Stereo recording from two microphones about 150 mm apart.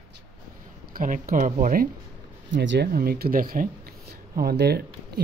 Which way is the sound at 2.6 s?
90° right.